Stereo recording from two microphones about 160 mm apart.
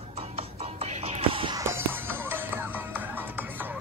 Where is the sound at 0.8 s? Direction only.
35° right (ahead or behind).